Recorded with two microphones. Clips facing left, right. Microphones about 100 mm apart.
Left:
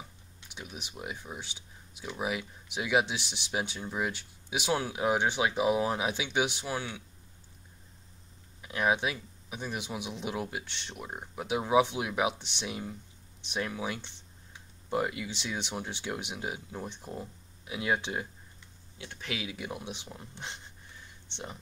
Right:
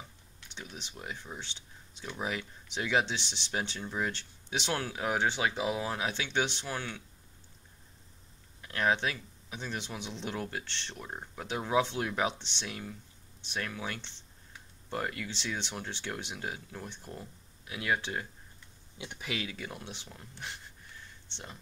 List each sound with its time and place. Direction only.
0.5 s speech: 10° left (ahead or behind)
8.5 s speech: 10° left (ahead or behind)
18.9 s speech: 15° right (ahead or behind)
19.2 s speech: 5° left (ahead or behind)
19.5 s speech: 15° left (ahead or behind)